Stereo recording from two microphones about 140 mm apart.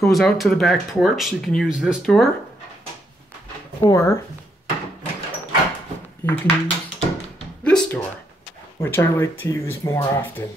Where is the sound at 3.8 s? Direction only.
20° left (ahead or behind).